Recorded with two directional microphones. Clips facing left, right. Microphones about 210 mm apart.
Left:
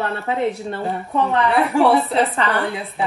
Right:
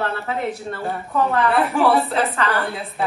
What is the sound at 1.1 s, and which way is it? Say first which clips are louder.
A woman's voice: even; centre (ahead or behind).